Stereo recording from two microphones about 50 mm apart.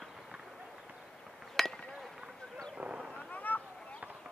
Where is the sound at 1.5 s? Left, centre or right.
Centre.